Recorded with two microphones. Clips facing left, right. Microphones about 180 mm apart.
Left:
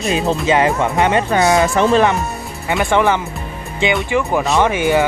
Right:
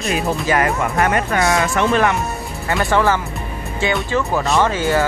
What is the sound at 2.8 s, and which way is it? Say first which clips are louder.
Speech: left 2 dB; 20° left (ahead or behind).